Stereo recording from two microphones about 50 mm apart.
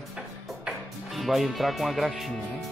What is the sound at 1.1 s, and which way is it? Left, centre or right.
Speech, centre.